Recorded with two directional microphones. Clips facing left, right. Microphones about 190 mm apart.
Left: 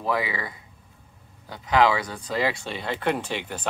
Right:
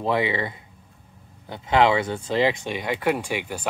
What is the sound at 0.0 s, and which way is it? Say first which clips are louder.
Speech: right 4 dB; 25° right (ahead or behind).